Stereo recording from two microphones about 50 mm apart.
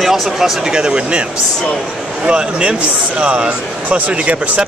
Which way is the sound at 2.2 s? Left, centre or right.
Right.